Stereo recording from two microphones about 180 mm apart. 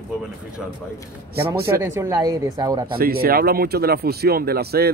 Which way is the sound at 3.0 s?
55° right (ahead or behind).